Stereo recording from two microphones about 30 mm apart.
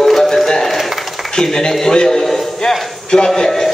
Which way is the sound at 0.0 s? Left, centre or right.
Centre.